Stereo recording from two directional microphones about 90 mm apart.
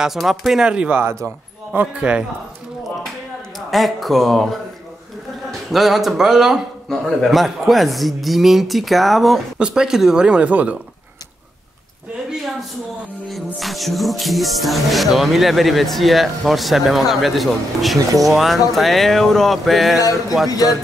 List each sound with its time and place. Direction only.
0.0 s speech: centre (ahead or behind)
1.0 s speech: 25° right (ahead or behind)
3.5 s speech: centre (ahead or behind)
5.7 s speech: centre (ahead or behind)
13.6 s speech: centre (ahead or behind)
20.0 s speech: 40° left (ahead or behind)